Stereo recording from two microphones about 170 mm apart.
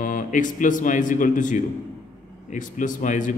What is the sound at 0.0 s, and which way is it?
A man's voice, 50° left (ahead or behind).